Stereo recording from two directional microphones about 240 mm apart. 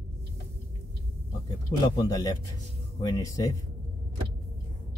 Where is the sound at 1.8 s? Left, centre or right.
Centre.